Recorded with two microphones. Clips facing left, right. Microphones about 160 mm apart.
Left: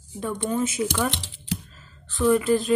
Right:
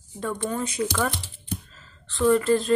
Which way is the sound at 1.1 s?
90° left.